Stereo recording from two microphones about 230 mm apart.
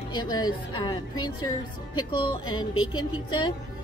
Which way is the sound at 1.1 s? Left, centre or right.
Left.